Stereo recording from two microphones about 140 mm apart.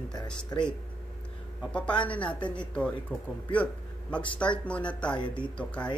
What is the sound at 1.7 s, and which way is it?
A man's voice, 10° left (ahead or behind).